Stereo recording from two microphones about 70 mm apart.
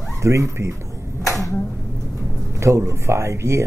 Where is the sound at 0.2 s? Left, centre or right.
Right.